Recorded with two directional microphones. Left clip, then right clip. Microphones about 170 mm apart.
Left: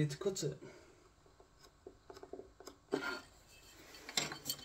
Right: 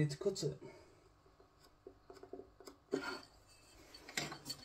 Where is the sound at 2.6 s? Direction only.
5° left (ahead or behind).